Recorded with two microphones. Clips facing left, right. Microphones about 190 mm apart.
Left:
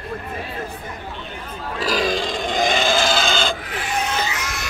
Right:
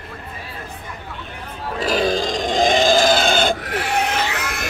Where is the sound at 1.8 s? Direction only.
30° right (ahead or behind); by 3.6 s 55° right (ahead or behind).